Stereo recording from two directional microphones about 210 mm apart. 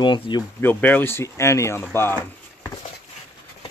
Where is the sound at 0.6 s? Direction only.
10° left (ahead or behind).